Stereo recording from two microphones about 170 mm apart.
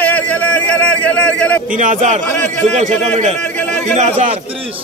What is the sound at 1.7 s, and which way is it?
Speech, 50° right (ahead or behind).